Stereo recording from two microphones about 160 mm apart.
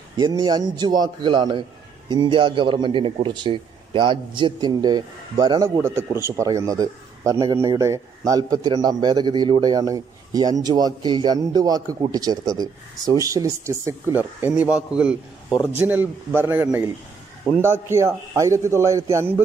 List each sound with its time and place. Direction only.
0.2 s a man's voice: 25° right (ahead or behind)
5.8 s a man's voice: 15° right (ahead or behind)